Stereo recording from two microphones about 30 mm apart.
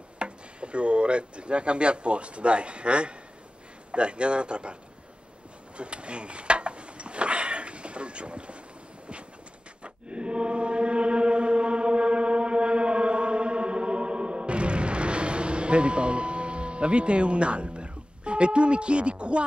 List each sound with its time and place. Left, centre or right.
0.2 s a man's voice: right
5.8 s a sound: right
9.8 s chant: right